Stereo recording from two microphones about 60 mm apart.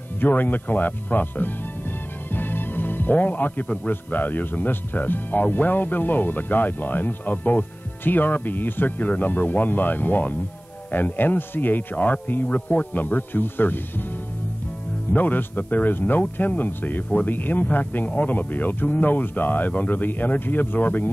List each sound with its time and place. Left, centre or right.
0.2 s music: left
3.6 s speech: left
15.1 s speech: left